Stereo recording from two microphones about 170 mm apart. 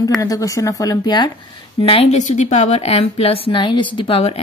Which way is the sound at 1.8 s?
35° left (ahead or behind).